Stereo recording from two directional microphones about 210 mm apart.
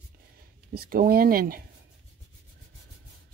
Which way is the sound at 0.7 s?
45° right (ahead or behind).